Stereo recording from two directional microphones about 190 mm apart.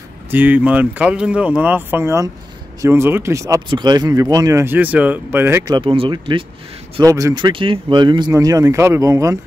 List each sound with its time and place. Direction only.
0.3 s speech: 10° right (ahead or behind)
5.8 s speech: 25° right (ahead or behind)